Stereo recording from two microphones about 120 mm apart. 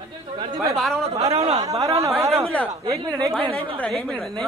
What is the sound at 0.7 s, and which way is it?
Speech, 5° left (ahead or behind).